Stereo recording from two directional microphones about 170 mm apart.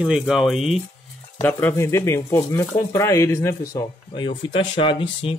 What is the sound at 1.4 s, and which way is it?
Speech, 15° left (ahead or behind).